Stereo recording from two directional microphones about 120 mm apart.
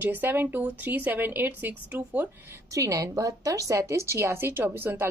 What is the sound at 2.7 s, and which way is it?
A woman's voice, 25° right (ahead or behind).